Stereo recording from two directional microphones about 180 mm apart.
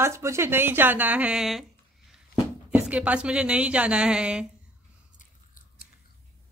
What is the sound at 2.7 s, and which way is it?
A woman's voice, 5° right (ahead or behind).